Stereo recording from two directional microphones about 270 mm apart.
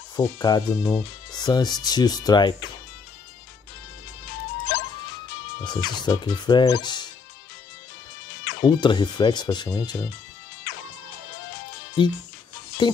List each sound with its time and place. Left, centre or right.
0.1 s speech: centre
5.6 s speech: centre
8.6 s speech: centre
12.0 s speech: centre